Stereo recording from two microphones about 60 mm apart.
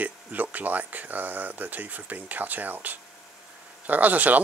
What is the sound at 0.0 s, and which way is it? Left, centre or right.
Speech, right.